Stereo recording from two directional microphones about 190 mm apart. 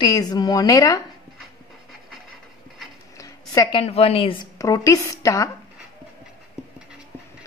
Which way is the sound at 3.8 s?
30° left (ahead or behind).